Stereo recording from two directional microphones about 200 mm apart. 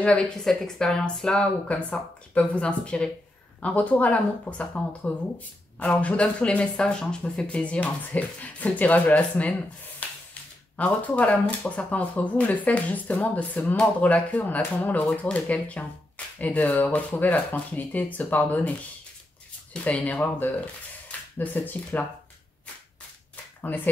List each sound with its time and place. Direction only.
0.0 s speech: 5° left (ahead or behind)
19.7 s speech: 5° left (ahead or behind)
23.6 s speech: 10° left (ahead or behind)